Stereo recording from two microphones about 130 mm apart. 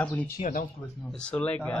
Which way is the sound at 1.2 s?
10° left (ahead or behind).